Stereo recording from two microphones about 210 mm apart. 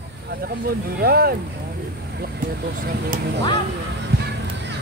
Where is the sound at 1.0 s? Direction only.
45° right (ahead or behind).